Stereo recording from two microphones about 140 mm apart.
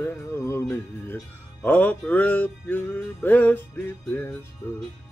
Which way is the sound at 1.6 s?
10° left (ahead or behind).